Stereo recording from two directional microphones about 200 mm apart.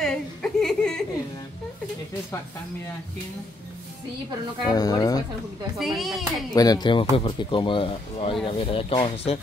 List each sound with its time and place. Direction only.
0.0 s a sound: centre (ahead or behind)
4.6 s speech: 20° left (ahead or behind)
5.8 s speech: centre (ahead or behind)
6.5 s speech: 20° left (ahead or behind)